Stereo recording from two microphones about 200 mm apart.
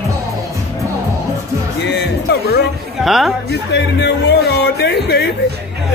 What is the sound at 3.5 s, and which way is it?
Speech, 60° left (ahead or behind).